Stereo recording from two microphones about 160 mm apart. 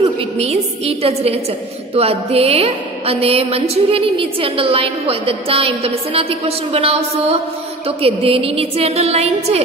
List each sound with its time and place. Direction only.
0.4 s a woman's voice: 40° right (ahead or behind)